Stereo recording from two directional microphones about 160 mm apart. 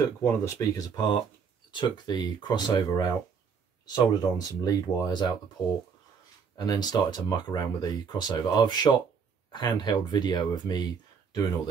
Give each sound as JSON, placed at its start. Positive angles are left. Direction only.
{"t": 0.2, "sound": "speech", "side_deg": 20}
{"t": 6.6, "sound": "speech", "side_deg": 25}